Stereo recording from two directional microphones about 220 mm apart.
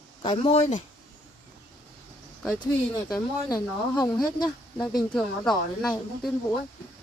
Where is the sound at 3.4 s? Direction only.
15° left (ahead or behind).